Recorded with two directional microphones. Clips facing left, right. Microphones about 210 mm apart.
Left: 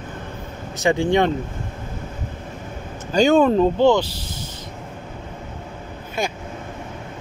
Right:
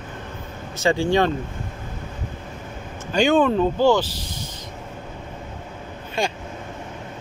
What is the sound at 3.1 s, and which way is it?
Speech, 40° left (ahead or behind).